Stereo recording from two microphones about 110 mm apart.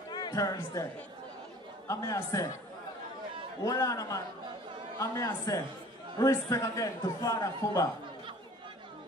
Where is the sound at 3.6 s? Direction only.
30° left (ahead or behind).